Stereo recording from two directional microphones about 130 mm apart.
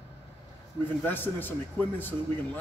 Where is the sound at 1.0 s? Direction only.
15° left (ahead or behind).